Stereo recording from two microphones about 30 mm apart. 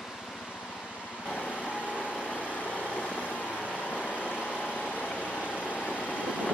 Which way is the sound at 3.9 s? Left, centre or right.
Left.